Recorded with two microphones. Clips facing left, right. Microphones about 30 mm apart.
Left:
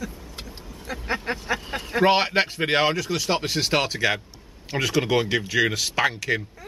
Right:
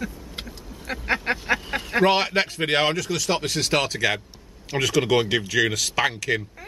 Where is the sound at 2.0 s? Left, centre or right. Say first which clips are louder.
Left 2 dB; centre.